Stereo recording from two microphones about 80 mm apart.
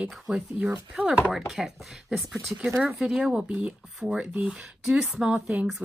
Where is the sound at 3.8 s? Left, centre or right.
Centre.